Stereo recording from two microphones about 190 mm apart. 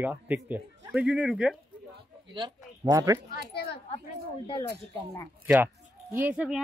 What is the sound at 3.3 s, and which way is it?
Speech, 55° left (ahead or behind).